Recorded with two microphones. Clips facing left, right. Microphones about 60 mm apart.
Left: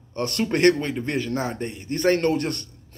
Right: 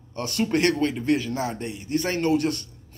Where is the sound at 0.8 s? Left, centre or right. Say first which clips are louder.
Right 3 dB; left.